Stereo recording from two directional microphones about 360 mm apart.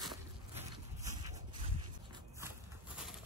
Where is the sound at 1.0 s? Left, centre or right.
Centre.